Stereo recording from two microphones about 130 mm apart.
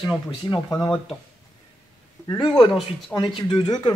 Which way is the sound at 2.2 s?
35° left (ahead or behind).